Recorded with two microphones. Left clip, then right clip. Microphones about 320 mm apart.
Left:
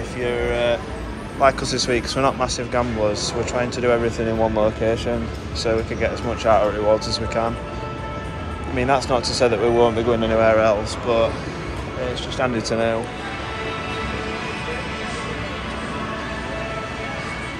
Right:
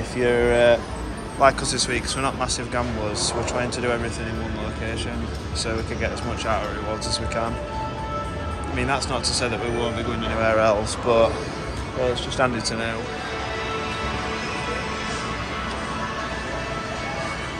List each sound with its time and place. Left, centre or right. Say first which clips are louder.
0.2 s speech: right 4 dB; centre
1.4 s speech: left 1 dB; centre
5.6 s speech: left 6 dB; centre
8.7 s speech: left 6 dB; centre
12.4 s speech: left 5 dB; centre